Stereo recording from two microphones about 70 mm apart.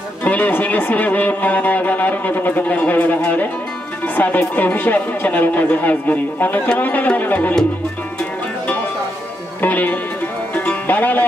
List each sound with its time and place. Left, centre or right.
0.2 s speech: left
9.6 s music: left